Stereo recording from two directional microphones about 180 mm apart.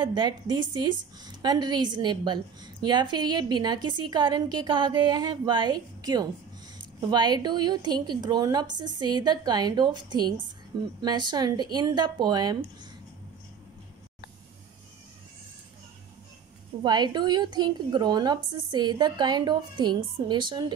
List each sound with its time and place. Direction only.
0.0 s a woman's voice: 25° right (ahead or behind)
16.8 s a woman's voice: 25° right (ahead or behind)